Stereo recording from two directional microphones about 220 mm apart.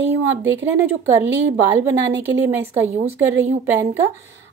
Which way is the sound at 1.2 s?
50° right (ahead or behind).